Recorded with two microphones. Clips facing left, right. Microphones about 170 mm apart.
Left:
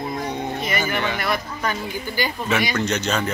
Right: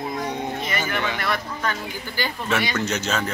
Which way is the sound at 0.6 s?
10° left (ahead or behind).